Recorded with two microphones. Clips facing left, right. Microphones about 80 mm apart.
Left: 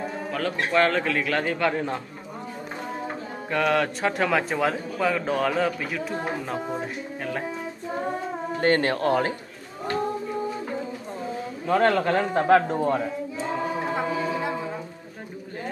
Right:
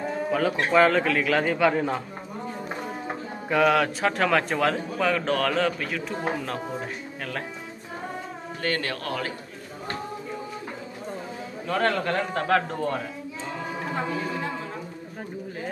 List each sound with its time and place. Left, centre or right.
0.3 s a man's voice: centre
3.4 s a man's voice: centre
8.5 s speech: left
11.6 s a man's voice: centre
13.9 s a sound: centre